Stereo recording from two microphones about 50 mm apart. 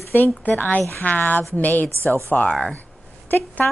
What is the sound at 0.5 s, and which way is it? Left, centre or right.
Speech, left.